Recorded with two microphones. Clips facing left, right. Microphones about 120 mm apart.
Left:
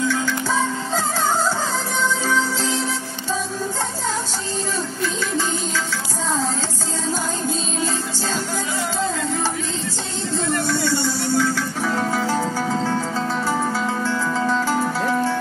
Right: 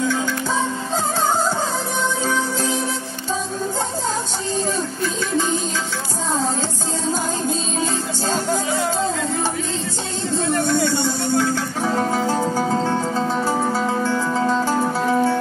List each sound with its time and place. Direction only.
0.1 s music: 20° right (ahead or behind)
2.2 s music: 20° right (ahead or behind)
10.9 s music: 20° right (ahead or behind)
14.3 s music: 35° right (ahead or behind)
14.6 s music: 20° right (ahead or behind)